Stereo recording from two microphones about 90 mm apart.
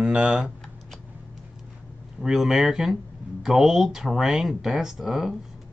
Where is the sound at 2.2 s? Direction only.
5° right (ahead or behind).